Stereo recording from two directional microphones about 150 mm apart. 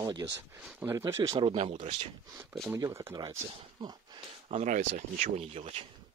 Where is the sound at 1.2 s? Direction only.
35° right (ahead or behind).